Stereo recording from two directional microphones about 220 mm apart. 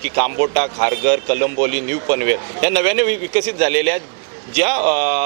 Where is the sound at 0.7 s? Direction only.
15° right (ahead or behind).